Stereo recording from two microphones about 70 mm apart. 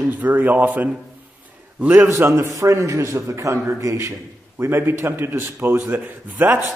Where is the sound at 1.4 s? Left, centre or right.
Right.